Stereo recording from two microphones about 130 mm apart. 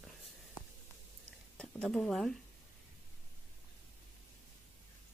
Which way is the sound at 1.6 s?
5° left (ahead or behind).